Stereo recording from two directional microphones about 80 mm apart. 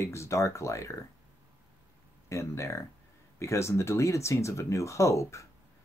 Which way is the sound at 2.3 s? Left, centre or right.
Left.